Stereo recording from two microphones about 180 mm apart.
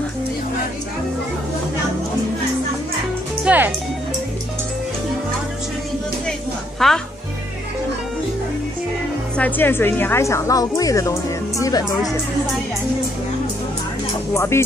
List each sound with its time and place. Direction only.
3.4 s music: 10° right (ahead or behind)
6.8 s speech: centre (ahead or behind)
9.4 s a woman's voice: 10° left (ahead or behind)
14.3 s a woman's voice: 15° left (ahead or behind)